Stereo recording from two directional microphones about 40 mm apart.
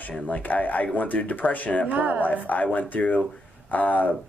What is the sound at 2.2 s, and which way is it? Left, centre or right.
Speech, left.